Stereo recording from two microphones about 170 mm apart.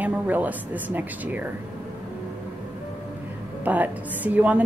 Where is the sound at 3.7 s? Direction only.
10° right (ahead or behind).